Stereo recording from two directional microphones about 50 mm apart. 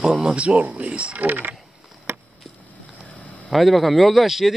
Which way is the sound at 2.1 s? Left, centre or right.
Right.